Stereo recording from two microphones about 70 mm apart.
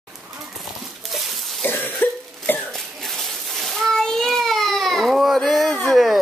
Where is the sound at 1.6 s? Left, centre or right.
Left.